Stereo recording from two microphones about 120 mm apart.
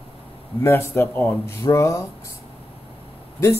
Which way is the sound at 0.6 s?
25° left (ahead or behind).